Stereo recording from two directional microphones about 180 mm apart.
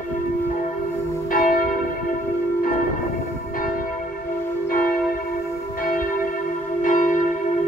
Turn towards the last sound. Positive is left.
turn(degrees=45)  # may be behind; listen again after turning